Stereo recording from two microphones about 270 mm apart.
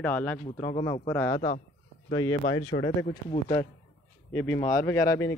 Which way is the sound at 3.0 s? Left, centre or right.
Left.